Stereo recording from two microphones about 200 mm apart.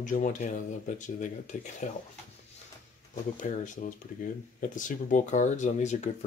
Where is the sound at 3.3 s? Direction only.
40° left (ahead or behind).